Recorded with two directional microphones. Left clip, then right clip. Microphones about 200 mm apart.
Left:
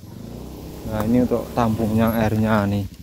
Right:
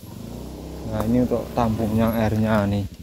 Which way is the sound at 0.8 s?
35° left (ahead or behind).